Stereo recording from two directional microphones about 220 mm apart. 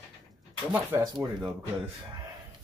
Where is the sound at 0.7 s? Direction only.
10° right (ahead or behind).